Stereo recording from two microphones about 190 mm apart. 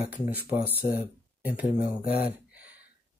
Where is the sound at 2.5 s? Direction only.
10° right (ahead or behind).